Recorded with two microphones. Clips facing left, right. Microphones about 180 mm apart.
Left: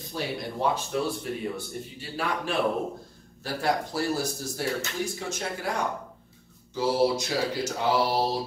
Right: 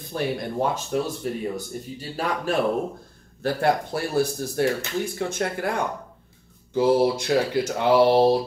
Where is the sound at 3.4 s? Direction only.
60° right (ahead or behind).